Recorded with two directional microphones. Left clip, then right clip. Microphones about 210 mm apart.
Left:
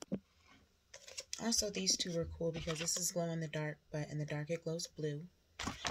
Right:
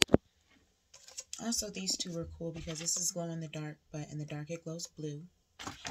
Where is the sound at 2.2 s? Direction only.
25° left (ahead or behind).